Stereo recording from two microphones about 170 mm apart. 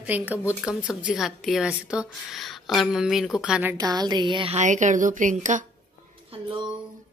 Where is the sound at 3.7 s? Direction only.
25° right (ahead or behind).